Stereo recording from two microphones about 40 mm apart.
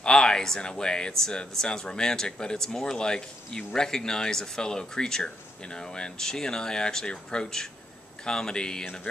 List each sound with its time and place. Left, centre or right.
0.0 s speech: centre